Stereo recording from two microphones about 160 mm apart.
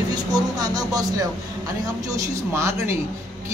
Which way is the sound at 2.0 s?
20° right (ahead or behind).